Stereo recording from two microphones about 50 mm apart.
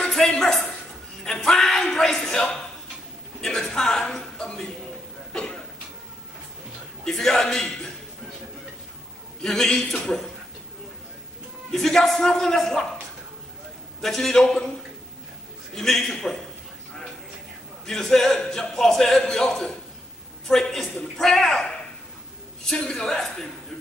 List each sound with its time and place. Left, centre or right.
0.1 s a sound: centre
7.1 s a man's voice: centre
9.4 s a man's voice: centre
11.7 s a man's voice: centre
14.0 s a woman's voice: centre
15.7 s a man's voice: centre
17.8 s a woman's voice: centre